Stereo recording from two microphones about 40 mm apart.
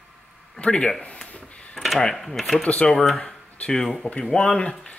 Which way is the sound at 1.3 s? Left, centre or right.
Left.